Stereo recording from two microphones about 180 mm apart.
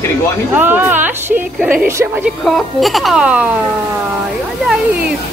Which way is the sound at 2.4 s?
Centre (ahead or behind).